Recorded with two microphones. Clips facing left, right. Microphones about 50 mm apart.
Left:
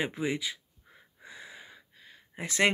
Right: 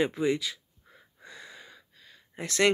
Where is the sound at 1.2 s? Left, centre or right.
Centre.